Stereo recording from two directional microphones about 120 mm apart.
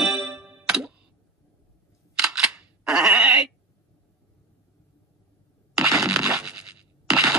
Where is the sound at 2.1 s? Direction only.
5° right (ahead or behind).